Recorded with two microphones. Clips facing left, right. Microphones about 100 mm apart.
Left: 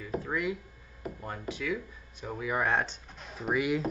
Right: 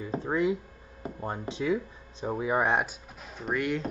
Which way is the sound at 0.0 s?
30° right (ahead or behind).